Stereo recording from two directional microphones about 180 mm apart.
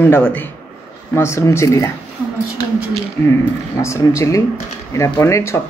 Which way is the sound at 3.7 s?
15° left (ahead or behind).